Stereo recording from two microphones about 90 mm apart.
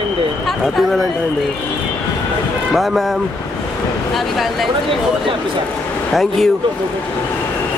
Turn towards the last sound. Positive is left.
turn(degrees=5)  # may be behind; listen again after turning